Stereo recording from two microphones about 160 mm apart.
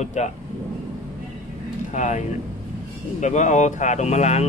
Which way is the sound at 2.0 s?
50° left (ahead or behind).